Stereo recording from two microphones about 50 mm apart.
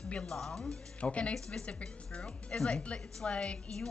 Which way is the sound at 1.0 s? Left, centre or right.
Left.